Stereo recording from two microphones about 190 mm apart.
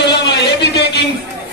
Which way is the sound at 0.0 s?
60° left (ahead or behind).